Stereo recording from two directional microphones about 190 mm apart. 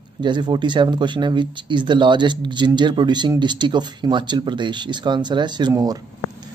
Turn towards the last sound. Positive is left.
turn(degrees=-20)  # may be behind; listen again after turning